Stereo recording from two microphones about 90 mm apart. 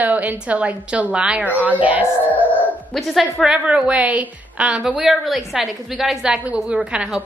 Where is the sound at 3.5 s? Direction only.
15° right (ahead or behind).